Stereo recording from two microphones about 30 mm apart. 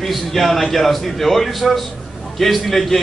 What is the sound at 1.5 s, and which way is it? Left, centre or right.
Speech, centre.